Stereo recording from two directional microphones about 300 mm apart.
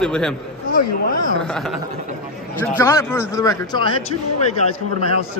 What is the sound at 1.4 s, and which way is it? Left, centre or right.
Speech, centre.